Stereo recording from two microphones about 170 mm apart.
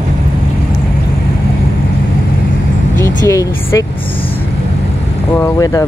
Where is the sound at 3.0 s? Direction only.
15° left (ahead or behind).